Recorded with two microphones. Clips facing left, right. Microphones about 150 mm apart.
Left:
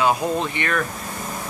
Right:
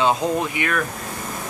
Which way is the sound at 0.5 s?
5° right (ahead or behind).